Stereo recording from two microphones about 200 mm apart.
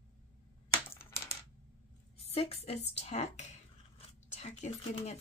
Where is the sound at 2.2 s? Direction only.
30° left (ahead or behind).